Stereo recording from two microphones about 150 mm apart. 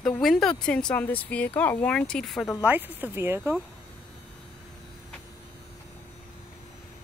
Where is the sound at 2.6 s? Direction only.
10° right (ahead or behind).